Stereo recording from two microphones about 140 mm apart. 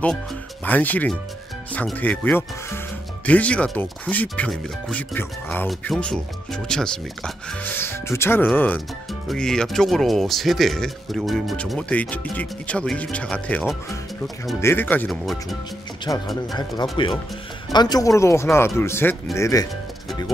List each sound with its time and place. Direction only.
0.7 s speech: 10° left (ahead or behind)
5.1 s speech: 10° left (ahead or behind)
14.6 s speech: 15° left (ahead or behind)
16.1 s speech: 25° left (ahead or behind)
16.9 s speech: 35° left (ahead or behind)